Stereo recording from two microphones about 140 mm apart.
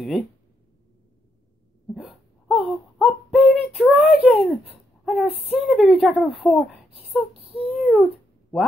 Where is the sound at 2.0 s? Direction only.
Centre (ahead or behind).